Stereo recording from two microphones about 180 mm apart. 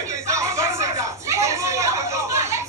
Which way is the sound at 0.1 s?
15° right (ahead or behind).